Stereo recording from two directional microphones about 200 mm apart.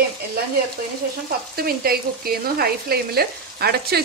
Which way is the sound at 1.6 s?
50° right (ahead or behind).